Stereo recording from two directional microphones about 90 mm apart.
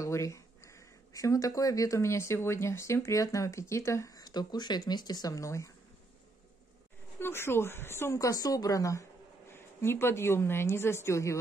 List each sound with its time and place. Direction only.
0.0 s speech: 35° left (ahead or behind)
4.2 s speech: 50° left (ahead or behind)
7.2 s speech: 25° left (ahead or behind)
9.5 s a woman's voice: 25° left (ahead or behind)